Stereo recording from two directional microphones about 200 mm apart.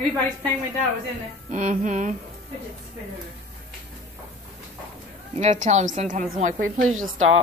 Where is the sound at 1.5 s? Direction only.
40° right (ahead or behind).